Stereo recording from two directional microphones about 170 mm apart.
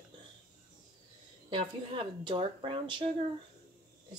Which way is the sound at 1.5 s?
30° right (ahead or behind).